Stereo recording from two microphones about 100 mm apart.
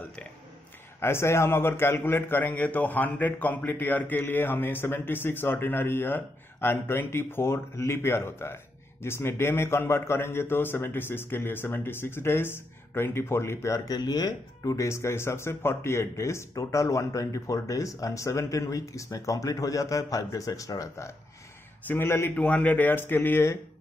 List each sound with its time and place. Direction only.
1.0 s a man's voice: 25° left (ahead or behind)
22.3 s a man's voice: 15° left (ahead or behind)